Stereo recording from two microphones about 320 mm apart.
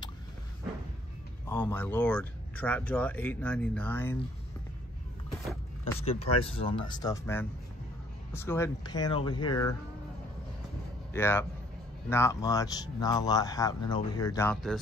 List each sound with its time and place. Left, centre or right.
1.5 s speech: centre
5.9 s speech: centre
11.1 s speech: centre